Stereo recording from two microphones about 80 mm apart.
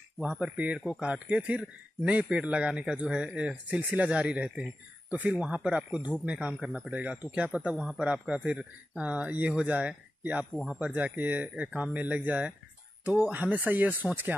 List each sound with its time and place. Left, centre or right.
0.2 s speech: centre
6.5 s speech: centre
7.7 s speech: centre; by 14.3 s right